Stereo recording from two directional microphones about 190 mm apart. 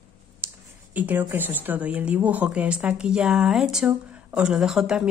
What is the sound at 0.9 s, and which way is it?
Speech, 10° right (ahead or behind).